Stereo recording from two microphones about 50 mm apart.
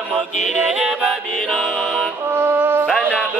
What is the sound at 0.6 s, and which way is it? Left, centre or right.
Music, centre.